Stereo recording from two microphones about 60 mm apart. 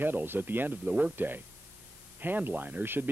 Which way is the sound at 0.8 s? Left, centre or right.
Right.